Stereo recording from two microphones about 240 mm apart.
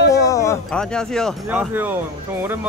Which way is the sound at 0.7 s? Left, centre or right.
Centre.